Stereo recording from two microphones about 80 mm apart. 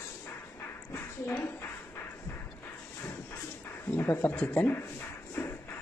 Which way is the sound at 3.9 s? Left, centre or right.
Left.